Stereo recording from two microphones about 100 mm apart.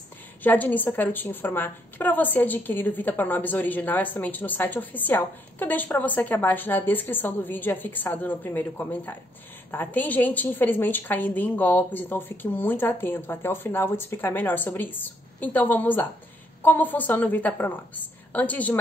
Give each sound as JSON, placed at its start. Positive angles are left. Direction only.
{"t": 0.4, "sound": "a woman's voice", "side_deg": 15}